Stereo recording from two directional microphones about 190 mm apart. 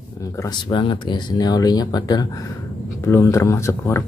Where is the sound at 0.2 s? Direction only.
15° left (ahead or behind).